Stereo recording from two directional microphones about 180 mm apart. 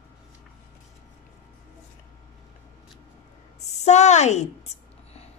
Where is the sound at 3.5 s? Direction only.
40° left (ahead or behind).